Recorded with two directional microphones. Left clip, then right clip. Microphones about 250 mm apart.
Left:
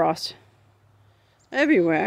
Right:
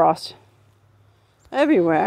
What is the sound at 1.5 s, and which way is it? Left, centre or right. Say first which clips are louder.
Speech: right 2 dB; centre.